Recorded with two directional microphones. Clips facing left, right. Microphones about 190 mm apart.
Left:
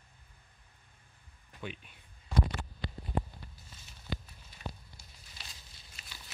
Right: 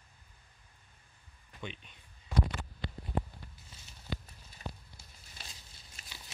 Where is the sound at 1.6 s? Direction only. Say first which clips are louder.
Left 1 dB; 5° left (ahead or behind).